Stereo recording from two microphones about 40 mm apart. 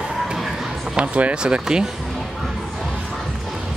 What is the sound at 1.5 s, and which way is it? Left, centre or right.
Speech, right.